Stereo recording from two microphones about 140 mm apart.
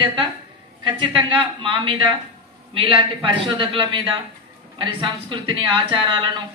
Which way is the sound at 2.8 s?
40° right (ahead or behind).